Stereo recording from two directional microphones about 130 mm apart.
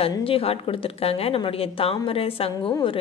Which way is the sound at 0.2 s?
45° left (ahead or behind).